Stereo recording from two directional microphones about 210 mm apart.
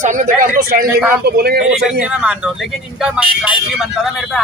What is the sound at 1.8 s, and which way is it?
A man's voice, 5° right (ahead or behind).